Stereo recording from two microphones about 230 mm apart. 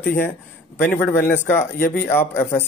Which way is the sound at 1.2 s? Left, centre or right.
Left.